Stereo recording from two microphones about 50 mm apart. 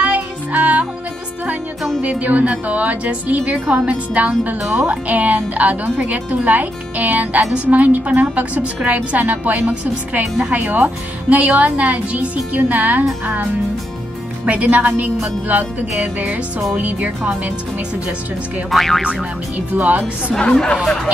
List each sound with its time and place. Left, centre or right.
0.0 s music: right
2.0 s a woman's voice: right
14.4 s a woman's voice: right
18.7 s speech: centre
19.7 s a woman's voice: right
20.3 s speech: centre
20.8 s speech: centre